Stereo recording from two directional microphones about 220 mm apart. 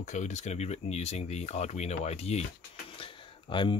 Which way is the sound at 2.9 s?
25° left (ahead or behind).